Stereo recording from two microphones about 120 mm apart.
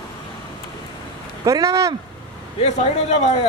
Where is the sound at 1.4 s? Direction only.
30° right (ahead or behind).